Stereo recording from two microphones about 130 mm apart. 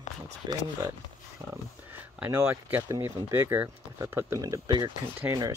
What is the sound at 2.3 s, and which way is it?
Speech, 20° right (ahead or behind).